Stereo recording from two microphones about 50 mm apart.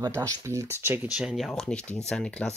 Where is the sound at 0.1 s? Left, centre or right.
Right.